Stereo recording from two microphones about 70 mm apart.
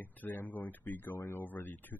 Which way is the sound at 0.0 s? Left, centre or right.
Left.